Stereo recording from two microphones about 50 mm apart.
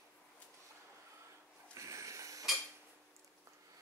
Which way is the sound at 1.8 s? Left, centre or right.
Right.